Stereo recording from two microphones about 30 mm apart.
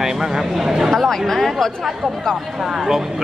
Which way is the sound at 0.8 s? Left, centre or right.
Centre.